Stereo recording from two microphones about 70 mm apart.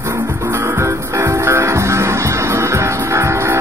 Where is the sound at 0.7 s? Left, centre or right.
Right.